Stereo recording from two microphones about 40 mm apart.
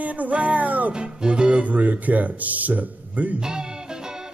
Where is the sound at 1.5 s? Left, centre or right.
Right.